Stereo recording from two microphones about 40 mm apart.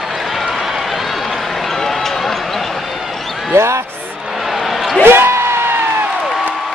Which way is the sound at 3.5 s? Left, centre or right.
Right.